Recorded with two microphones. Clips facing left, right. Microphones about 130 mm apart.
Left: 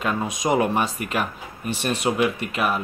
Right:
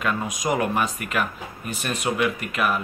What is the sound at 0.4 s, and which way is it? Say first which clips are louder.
Speech: left 3 dB; 25° left (ahead or behind).